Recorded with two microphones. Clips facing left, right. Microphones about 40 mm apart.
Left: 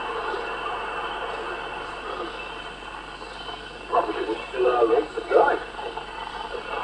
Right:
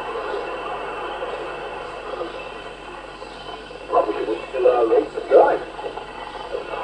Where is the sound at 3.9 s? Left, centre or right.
Left.